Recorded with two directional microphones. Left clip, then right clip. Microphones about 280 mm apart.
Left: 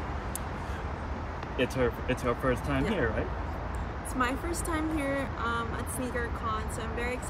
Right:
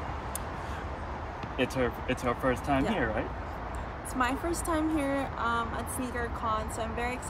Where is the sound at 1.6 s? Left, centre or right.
Centre.